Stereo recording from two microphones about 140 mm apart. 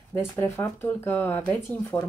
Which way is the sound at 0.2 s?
15° left (ahead or behind).